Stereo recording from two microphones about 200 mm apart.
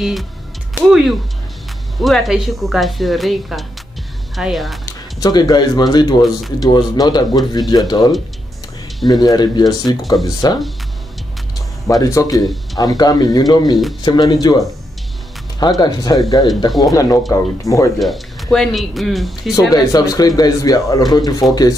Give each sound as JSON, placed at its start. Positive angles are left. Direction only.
{"t": 0.0, "sound": "speech", "side_deg": 0}
{"t": 4.8, "sound": "speech", "side_deg": 20}
{"t": 11.9, "sound": "speech", "side_deg": 15}
{"t": 17.9, "sound": "speech", "side_deg": 0}
{"t": 19.7, "sound": "speech", "side_deg": 20}